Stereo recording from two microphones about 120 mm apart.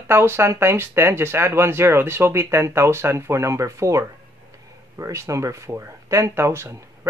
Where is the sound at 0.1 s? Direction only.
20° right (ahead or behind).